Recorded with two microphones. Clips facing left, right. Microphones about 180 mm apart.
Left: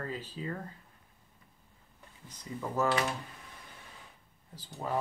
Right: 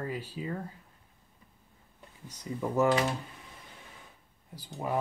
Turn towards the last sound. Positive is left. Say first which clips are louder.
# right 3 dB
turn(degrees=-15)  # may be behind; listen again after turning